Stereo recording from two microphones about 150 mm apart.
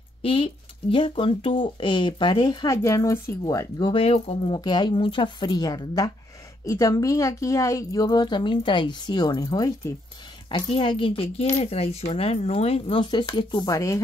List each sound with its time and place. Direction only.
0.2 s speech: 35° left (ahead or behind)
4.6 s a woman's voice: 30° left (ahead or behind)